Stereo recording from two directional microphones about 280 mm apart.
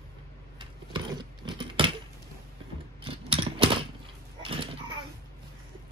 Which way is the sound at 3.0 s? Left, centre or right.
Centre.